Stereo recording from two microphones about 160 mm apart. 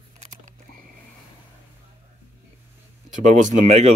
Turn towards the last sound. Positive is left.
turn(degrees=-45)  # may be behind; listen again after turning